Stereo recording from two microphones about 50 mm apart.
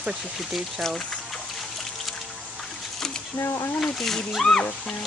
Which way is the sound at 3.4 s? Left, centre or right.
Left.